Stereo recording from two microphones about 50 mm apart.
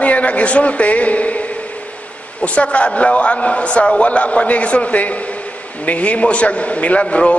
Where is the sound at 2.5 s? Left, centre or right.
Left.